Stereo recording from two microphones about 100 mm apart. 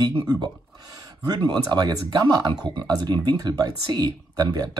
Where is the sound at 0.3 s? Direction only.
40° right (ahead or behind).